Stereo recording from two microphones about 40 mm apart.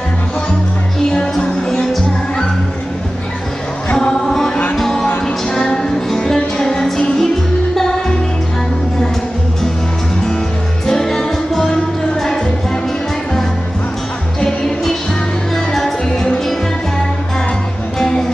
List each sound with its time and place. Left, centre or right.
1.1 s music: centre
4.7 s music: centre
10.9 s music: centre
14.4 s music: centre
17.9 s music: centre